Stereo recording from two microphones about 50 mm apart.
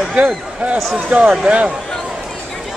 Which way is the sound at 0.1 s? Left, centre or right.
Right.